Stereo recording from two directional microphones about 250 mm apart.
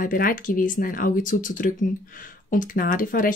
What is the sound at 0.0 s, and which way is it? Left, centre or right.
Speech, left.